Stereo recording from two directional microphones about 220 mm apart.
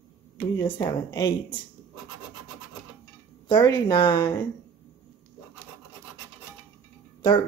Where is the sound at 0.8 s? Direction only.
15° left (ahead or behind).